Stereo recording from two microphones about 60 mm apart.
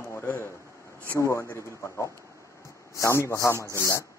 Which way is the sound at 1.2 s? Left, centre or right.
Left.